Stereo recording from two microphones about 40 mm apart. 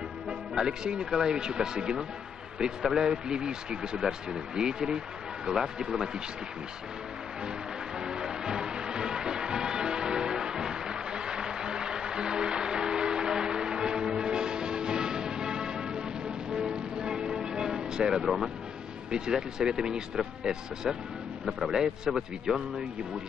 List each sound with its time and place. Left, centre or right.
0.3 s speech: centre
8.0 s music: centre
19.0 s speech: centre